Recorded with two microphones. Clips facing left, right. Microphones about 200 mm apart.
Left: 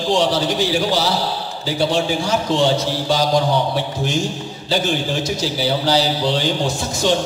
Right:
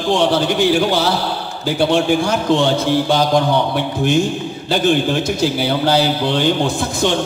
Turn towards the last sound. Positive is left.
turn(degrees=-55)  # may be behind; listen again after turning